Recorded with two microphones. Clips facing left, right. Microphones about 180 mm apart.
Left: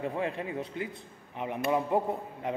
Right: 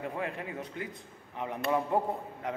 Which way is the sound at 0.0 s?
25° left (ahead or behind).